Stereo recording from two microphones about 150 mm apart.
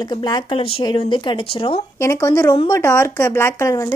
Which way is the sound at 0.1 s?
30° left (ahead or behind).